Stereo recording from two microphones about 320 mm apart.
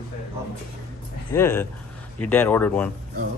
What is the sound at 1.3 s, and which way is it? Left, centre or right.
Speech, centre.